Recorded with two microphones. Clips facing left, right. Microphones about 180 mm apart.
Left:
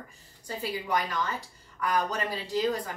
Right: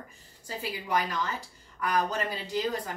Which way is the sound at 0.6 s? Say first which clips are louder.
Even; centre (ahead or behind).